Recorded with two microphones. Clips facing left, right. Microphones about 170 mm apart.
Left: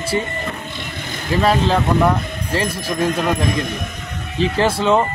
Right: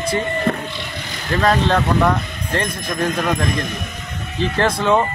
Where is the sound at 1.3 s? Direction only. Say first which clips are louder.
Even; 5° left (ahead or behind).